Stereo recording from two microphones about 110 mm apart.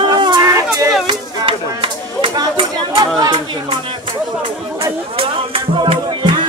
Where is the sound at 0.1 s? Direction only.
40° right (ahead or behind).